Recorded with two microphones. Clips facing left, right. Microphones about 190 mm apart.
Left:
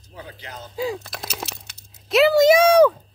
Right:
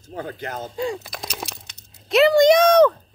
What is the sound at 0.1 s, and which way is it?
Speech, 50° right (ahead or behind).